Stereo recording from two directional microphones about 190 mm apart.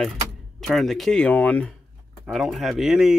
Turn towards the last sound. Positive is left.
turn(degrees=-5)  # may be behind; listen again after turning